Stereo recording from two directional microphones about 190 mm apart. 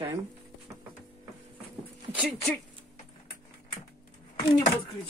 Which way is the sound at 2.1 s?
Centre (ahead or behind).